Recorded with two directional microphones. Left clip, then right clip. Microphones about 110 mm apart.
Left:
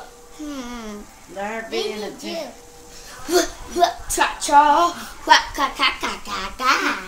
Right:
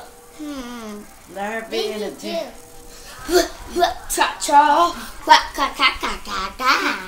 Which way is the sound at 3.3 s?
Centre (ahead or behind).